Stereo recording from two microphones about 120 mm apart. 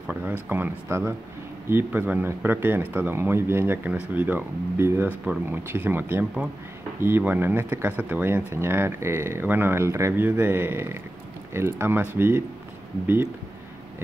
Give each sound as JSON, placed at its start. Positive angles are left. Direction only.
{"t": 0.0, "sound": "speech", "side_deg": -10}